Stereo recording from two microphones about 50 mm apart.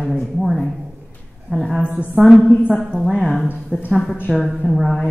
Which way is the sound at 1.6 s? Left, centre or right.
Centre.